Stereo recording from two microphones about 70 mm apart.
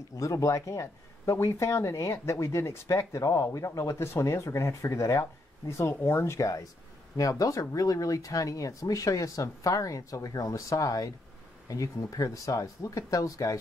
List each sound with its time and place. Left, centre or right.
0.2 s speech: left